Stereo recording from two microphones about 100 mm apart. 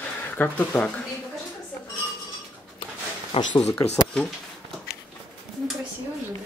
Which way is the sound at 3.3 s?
70° left (ahead or behind).